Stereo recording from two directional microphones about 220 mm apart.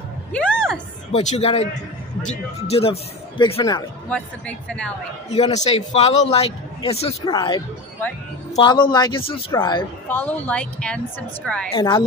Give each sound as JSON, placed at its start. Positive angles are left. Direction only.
{"t": 0.3, "sound": "a sound", "side_deg": 5}
{"t": 1.1, "sound": "a man's voice", "side_deg": 25}
{"t": 4.1, "sound": "a woman's voice", "side_deg": 5}
{"t": 5.3, "sound": "a man's voice", "side_deg": 30}
{"t": 10.0, "sound": "a woman's voice", "side_deg": 10}
{"t": 11.7, "sound": "a man's voice", "side_deg": 20}